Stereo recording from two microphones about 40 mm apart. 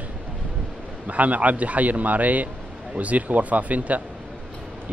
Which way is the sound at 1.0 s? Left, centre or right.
Right.